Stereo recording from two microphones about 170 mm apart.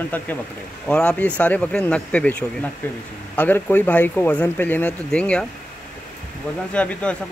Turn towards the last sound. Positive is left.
turn(degrees=5)  # may be behind; listen again after turning